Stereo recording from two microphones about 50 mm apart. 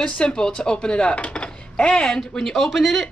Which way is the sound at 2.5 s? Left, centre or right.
Centre.